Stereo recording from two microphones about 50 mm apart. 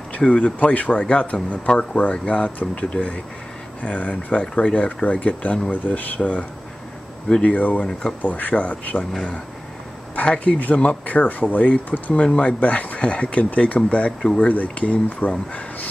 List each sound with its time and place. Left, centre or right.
0.2 s speech: left
7.4 s speech: left
10.1 s speech: left
12.1 s speech: left